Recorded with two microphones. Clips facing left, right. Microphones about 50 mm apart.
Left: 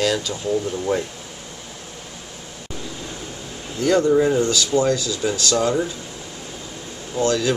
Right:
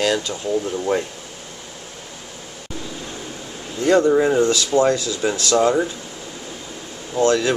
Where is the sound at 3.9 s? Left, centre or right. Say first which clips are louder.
Right 1 dB; centre.